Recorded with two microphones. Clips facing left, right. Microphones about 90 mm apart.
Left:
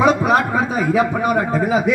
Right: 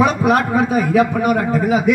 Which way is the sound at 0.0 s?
30° left (ahead or behind).